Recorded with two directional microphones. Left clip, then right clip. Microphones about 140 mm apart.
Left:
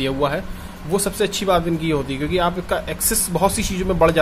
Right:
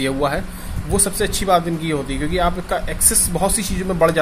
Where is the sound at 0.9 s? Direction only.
20° left (ahead or behind).